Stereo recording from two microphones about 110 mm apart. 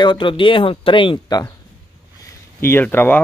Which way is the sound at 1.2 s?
35° left (ahead or behind).